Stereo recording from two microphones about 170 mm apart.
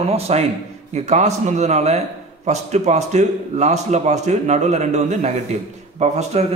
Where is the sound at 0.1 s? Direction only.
40° right (ahead or behind).